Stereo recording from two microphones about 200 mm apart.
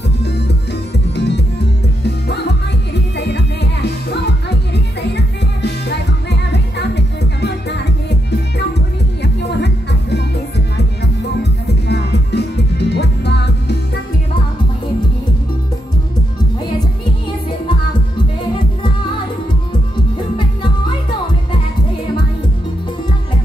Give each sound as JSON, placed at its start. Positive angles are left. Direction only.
{"t": 1.1, "sound": "music", "side_deg": 55}
{"t": 3.2, "sound": "music", "side_deg": 55}
{"t": 11.6, "sound": "music", "side_deg": 55}